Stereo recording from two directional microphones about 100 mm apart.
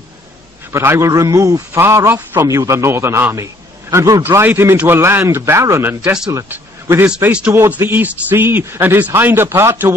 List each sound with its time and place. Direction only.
0.7 s a man's voice: 25° right (ahead or behind)
4.2 s speech: 20° right (ahead or behind)
6.5 s a sound: 25° right (ahead or behind)
7.2 s speech: 15° right (ahead or behind)